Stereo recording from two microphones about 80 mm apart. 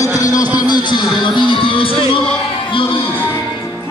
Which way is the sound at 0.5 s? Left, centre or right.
Left.